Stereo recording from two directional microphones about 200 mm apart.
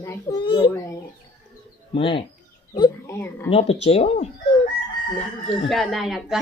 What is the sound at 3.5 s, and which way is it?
Speech, 30° left (ahead or behind).